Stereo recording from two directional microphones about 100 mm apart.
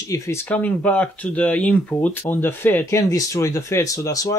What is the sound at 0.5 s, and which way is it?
Speech, 15° left (ahead or behind).